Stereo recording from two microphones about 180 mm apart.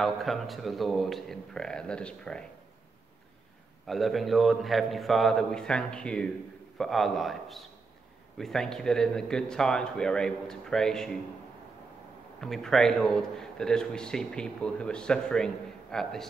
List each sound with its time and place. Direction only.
0.0 s a man's voice: centre (ahead or behind)
3.8 s a man's voice: centre (ahead or behind)
12.4 s a man's voice: centre (ahead or behind)